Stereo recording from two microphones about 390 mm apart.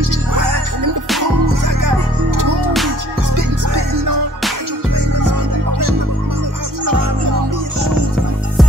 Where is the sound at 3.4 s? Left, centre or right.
Right.